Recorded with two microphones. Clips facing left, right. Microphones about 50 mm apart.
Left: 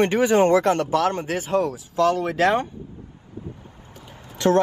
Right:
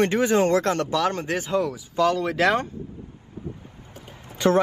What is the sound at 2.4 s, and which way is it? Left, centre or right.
Speech, left.